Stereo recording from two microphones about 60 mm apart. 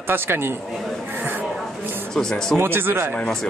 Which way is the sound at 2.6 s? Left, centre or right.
Right.